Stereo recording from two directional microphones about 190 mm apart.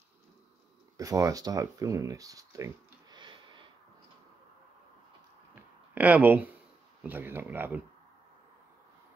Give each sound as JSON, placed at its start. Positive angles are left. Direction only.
{"t": 0.9, "sound": "speech", "side_deg": -20}
{"t": 5.9, "sound": "speech", "side_deg": -10}